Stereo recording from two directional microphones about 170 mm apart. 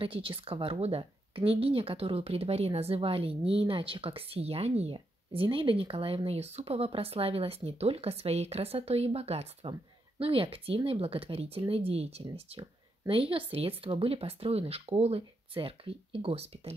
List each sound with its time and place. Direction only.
0.0 s speech: 30° right (ahead or behind)